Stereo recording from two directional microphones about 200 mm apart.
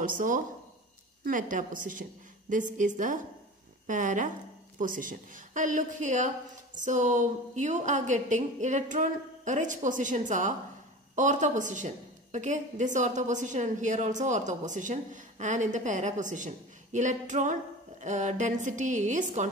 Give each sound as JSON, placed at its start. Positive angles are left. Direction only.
{"t": 1.2, "sound": "a woman's voice", "side_deg": -40}